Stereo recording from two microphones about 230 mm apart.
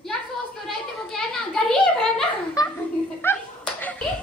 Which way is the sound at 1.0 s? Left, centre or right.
Centre.